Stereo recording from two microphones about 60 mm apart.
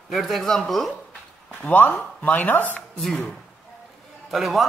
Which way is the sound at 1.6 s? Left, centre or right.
Left.